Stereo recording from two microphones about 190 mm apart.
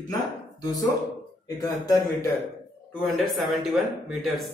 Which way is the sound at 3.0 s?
Centre (ahead or behind).